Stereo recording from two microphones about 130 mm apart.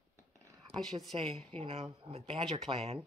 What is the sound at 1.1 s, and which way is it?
Speech, 45° right (ahead or behind).